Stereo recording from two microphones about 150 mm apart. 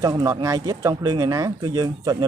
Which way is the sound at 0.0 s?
25° right (ahead or behind).